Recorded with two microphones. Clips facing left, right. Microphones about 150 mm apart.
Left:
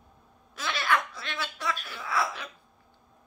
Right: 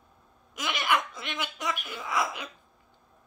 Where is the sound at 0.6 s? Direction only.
15° right (ahead or behind).